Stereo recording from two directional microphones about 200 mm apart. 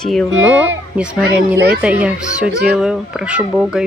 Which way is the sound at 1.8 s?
5° right (ahead or behind).